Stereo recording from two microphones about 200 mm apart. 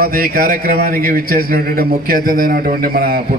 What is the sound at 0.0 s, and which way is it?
A man's voice, 45° right (ahead or behind).